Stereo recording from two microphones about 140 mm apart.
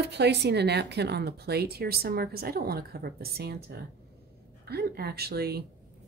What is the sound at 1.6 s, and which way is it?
A woman's voice, 90° right.